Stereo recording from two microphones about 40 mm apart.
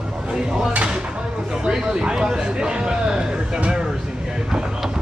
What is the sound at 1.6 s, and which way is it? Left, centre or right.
A man's voice, right.